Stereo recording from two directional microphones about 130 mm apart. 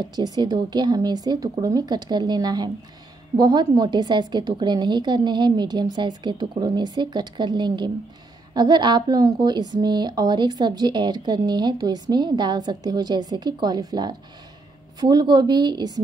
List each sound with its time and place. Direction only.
0.0 s a woman's voice: 30° right (ahead or behind)